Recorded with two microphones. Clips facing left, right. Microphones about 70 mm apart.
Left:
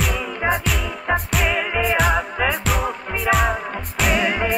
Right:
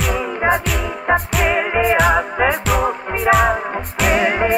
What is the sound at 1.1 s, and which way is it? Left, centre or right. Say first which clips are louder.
Music: right 4 dB; centre.